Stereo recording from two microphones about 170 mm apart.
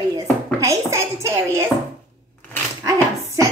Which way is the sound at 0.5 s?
20° right (ahead or behind).